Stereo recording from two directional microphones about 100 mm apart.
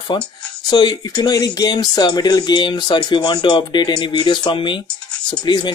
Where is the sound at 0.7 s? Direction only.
45° left (ahead or behind).